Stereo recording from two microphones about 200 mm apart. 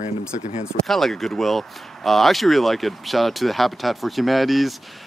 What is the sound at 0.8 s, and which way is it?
Speech, centre (ahead or behind).